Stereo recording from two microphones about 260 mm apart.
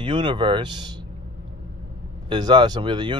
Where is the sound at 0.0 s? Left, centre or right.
Centre.